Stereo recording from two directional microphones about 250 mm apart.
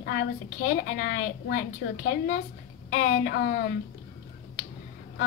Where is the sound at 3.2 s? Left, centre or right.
Left.